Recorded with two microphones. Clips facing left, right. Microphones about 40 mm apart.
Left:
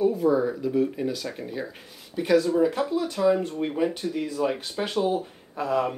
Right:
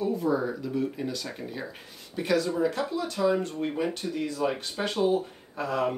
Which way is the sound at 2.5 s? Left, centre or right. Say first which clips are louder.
Left 4 dB; centre.